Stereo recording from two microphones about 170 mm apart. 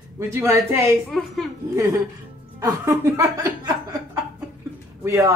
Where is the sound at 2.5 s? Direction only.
15° right (ahead or behind).